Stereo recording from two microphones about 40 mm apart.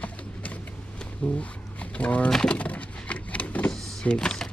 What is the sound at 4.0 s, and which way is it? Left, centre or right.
Power windows, left.